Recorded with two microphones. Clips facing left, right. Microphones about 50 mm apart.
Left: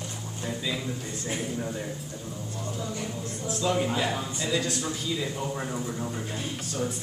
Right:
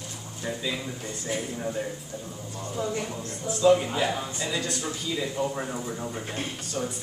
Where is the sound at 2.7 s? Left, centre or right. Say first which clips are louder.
Right 8 dB; right.